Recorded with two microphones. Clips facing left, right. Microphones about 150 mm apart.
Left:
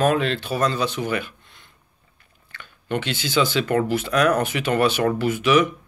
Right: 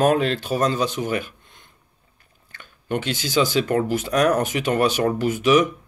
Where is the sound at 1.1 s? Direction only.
45° right (ahead or behind).